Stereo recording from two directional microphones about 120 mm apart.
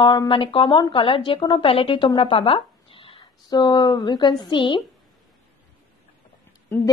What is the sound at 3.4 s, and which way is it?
A woman's voice, 35° left (ahead or behind).